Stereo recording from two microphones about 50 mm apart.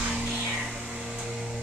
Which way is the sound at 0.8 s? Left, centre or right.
Centre.